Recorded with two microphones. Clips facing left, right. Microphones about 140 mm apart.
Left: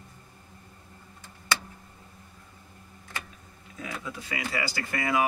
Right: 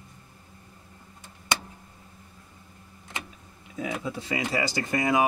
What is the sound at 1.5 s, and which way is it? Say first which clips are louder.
Tick: right 1 dB; 20° right (ahead or behind).